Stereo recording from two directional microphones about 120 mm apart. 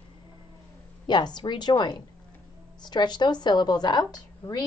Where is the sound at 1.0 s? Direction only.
40° left (ahead or behind).